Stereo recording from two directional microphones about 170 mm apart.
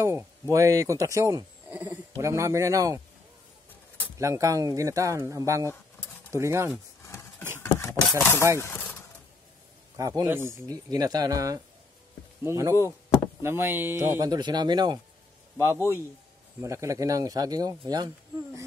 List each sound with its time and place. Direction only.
0.0 s speech: 15° right (ahead or behind)
4.2 s speech: 20° right (ahead or behind)
7.5 s a sound: 15° left (ahead or behind)
8.2 s speech: 15° left (ahead or behind)
9.9 s a man's voice: 20° right (ahead or behind)